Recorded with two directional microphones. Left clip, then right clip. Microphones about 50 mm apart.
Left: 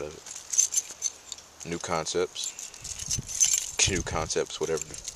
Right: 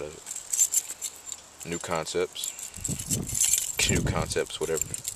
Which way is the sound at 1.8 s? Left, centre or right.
Left.